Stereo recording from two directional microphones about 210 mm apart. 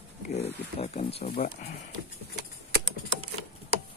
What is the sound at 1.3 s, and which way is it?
Speech, 45° left (ahead or behind).